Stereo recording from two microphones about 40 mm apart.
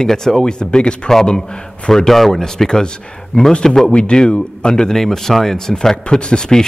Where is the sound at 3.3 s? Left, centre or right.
Left.